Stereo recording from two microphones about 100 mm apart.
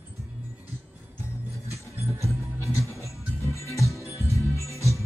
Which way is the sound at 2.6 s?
30° left (ahead or behind).